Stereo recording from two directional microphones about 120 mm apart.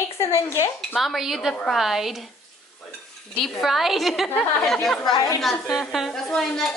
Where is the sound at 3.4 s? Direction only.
Centre (ahead or behind).